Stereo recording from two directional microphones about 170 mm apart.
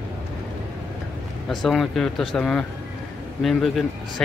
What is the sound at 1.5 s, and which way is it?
Speech, centre (ahead or behind).